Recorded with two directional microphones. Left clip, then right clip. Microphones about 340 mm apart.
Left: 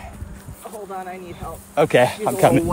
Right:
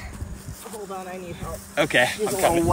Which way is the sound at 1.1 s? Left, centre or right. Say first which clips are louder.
Left 2 dB; centre.